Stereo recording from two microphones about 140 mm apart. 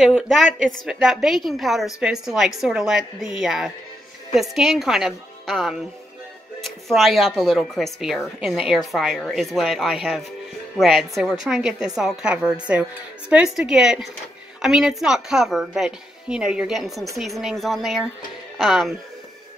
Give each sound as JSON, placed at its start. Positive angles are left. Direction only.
{"t": 0.0, "sound": "speech", "side_deg": 0}